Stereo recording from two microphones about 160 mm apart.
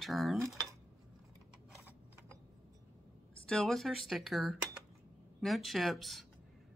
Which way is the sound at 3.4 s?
5° left (ahead or behind).